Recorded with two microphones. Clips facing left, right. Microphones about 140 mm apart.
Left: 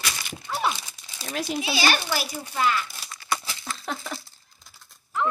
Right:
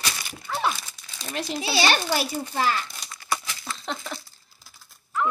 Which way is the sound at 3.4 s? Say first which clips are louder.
Even; 35° left (ahead or behind).